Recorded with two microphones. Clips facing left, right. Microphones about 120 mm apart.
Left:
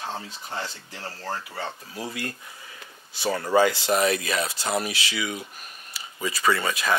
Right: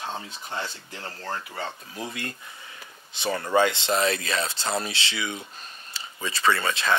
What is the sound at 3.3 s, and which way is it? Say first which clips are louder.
Speech: left 1 dB; 30° left (ahead or behind).